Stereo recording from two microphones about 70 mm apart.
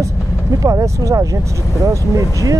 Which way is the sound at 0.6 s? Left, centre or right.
Right.